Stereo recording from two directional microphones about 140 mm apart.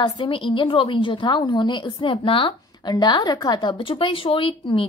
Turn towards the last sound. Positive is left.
turn(degrees=35)  # may be behind; listen again after turning